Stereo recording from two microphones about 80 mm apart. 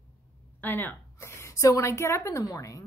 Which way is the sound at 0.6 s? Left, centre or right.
Left.